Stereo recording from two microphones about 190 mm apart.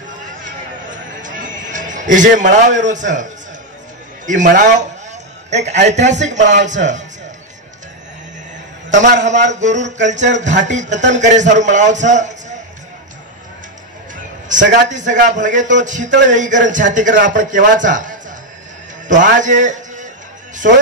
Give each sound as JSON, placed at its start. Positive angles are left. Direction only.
{"t": 0.8, "sound": "a sound", "side_deg": -45}
{"t": 4.3, "sound": "a man's voice", "side_deg": -40}
{"t": 8.9, "sound": "a man's voice", "side_deg": -40}
{"t": 14.7, "sound": "a man's voice", "side_deg": -40}
{"t": 19.3, "sound": "a man's voice", "side_deg": -40}
{"t": 20.5, "sound": "music", "side_deg": -40}